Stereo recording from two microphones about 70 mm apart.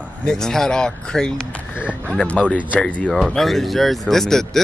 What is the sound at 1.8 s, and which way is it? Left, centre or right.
Speech, centre.